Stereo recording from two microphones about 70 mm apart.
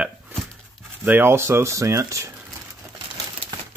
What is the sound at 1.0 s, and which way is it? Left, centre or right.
Speech, right.